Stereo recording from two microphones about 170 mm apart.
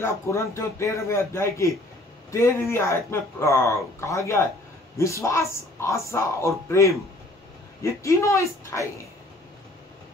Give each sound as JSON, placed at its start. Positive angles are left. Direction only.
{"t": 0.0, "sound": "a man's voice", "side_deg": 15}